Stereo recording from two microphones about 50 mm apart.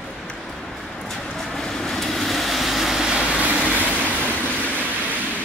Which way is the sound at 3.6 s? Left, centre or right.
Left.